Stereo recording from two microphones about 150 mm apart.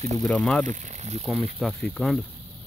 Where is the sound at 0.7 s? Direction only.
55° right (ahead or behind).